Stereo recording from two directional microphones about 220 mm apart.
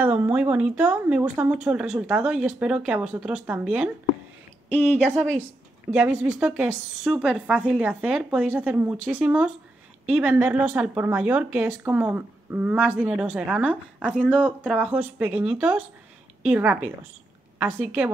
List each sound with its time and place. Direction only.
0.0 s speech: 10° right (ahead or behind)
5.0 s speech: 5° right (ahead or behind)